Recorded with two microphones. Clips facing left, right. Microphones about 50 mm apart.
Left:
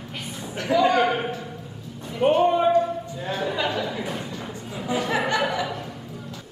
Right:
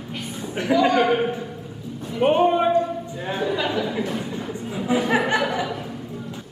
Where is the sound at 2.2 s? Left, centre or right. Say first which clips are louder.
Right 1 dB; centre.